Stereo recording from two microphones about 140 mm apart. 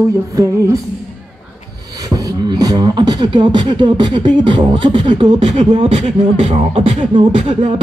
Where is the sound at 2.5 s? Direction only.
30° right (ahead or behind).